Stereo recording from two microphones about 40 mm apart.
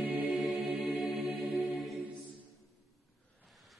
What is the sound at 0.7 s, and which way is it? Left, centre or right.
Music, right.